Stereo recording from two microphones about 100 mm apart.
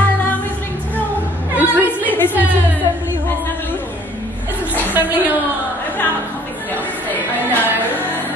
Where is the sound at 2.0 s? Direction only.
20° left (ahead or behind).